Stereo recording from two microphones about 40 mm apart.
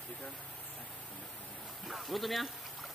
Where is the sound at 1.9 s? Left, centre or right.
Centre.